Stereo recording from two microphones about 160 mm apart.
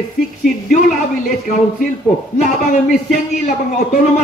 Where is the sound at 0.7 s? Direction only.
50° left (ahead or behind).